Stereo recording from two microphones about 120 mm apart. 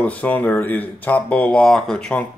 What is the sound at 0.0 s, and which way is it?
Speech, 10° left (ahead or behind).